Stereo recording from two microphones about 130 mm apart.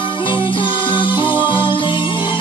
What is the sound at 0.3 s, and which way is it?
Music, 40° left (ahead or behind).